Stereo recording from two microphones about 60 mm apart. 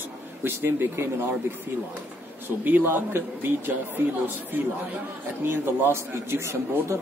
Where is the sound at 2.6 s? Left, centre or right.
Right.